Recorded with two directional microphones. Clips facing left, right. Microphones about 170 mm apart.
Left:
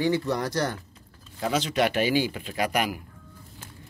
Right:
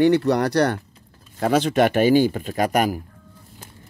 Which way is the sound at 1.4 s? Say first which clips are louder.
Right 7 dB; 55° right (ahead or behind).